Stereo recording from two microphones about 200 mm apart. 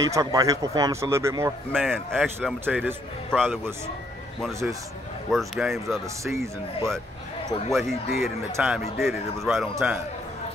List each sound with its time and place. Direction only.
0.0 s speech: 15° right (ahead or behind)
1.7 s a man's voice: 5° left (ahead or behind)
2.6 s speech: 10° right (ahead or behind)
3.3 s a man's voice: 5° left (ahead or behind)
5.3 s a man's voice: centre (ahead or behind)
6.2 s speech: 15° right (ahead or behind)
7.7 s a man's voice: centre (ahead or behind)
8.5 s speech: 10° right (ahead or behind)
9.0 s a man's voice: centre (ahead or behind)